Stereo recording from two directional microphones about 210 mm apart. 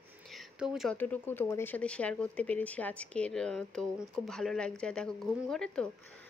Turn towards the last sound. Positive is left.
turn(degrees=5)  # may be behind; listen again after turning